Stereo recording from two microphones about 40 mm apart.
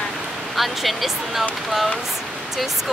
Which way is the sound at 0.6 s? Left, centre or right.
Centre.